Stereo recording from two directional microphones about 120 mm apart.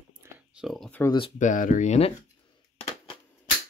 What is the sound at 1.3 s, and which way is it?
Speech, 90° left.